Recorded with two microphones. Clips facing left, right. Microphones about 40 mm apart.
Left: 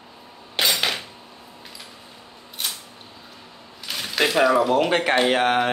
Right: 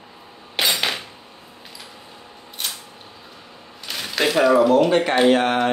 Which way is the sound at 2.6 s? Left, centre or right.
Centre.